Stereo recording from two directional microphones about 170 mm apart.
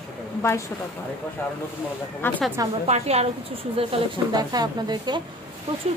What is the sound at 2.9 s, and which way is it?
A woman's voice, 40° right (ahead or behind).